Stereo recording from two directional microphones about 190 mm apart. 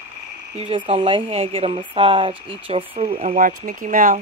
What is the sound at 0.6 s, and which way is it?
Speech, 30° right (ahead or behind).